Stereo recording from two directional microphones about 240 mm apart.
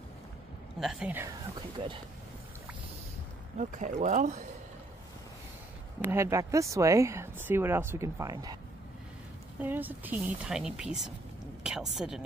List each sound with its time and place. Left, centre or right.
0.7 s speech: centre
3.5 s speech: right
5.9 s speech: centre
9.6 s a woman's voice: centre